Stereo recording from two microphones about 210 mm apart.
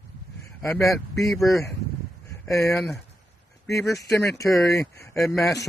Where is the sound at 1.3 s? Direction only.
Centre (ahead or behind).